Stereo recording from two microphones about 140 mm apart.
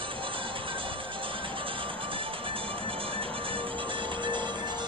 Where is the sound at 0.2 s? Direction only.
40° right (ahead or behind).